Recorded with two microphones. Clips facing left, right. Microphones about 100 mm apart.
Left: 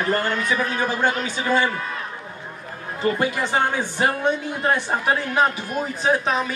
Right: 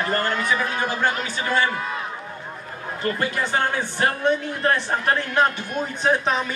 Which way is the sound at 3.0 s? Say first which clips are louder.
Left 3 dB; 15° left (ahead or behind).